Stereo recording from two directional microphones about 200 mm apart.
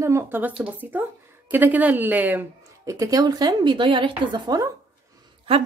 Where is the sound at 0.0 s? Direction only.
15° right (ahead or behind).